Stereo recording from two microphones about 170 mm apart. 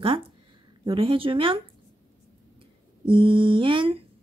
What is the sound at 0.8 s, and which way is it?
Speech, 30° right (ahead or behind).